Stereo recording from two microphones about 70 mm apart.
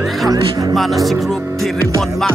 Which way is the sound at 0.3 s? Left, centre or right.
Right.